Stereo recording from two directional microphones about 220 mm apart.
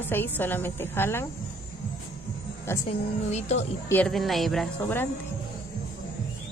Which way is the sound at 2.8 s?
30° left (ahead or behind).